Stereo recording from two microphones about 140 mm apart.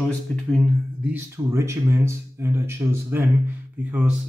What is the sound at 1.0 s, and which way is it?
Speech, 15° right (ahead or behind).